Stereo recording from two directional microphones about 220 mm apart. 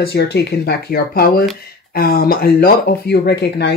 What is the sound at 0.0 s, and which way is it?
Speech, 45° left (ahead or behind).